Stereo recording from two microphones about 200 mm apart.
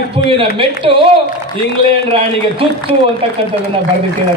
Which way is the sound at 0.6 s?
25° right (ahead or behind).